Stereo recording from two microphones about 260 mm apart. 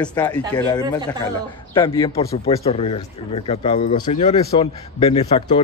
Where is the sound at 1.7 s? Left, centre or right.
Centre.